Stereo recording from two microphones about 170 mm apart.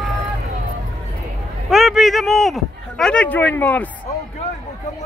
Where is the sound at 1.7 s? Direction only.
Centre (ahead or behind).